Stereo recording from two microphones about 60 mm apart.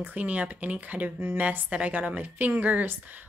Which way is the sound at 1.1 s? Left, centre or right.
Right.